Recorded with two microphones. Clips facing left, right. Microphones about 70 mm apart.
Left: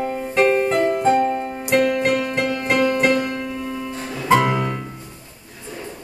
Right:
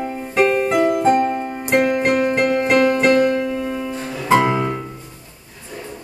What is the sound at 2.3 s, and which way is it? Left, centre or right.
Music, centre.